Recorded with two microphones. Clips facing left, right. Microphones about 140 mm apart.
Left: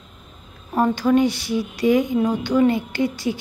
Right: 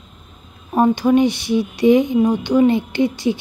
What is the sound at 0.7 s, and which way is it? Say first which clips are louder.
A child's voice: right 3 dB; 20° right (ahead or behind).